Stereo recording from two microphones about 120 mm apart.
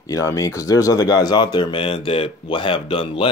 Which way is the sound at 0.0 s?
25° left (ahead or behind).